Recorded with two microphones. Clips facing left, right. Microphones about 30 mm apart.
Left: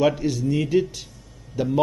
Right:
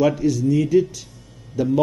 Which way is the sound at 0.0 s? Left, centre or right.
Centre.